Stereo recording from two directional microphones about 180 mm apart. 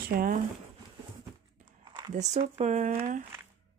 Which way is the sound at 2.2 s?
40° right (ahead or behind).